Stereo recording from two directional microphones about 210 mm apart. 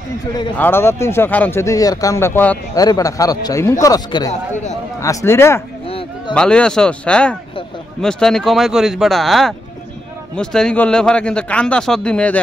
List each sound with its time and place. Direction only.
0.6 s speech: 10° left (ahead or behind)
5.9 s a sound: 25° left (ahead or behind)
6.3 s speech: 5° left (ahead or behind)